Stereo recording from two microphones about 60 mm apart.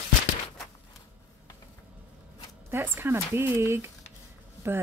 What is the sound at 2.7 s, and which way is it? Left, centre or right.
Speech, right.